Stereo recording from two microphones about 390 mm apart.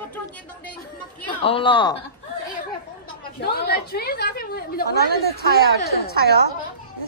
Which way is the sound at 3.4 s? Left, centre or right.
Left.